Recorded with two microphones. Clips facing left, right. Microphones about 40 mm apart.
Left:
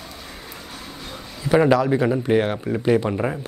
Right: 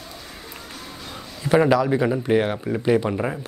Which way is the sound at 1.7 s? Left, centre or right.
Centre.